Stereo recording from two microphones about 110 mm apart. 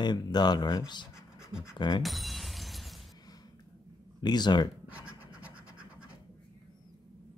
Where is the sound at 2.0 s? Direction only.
Centre (ahead or behind).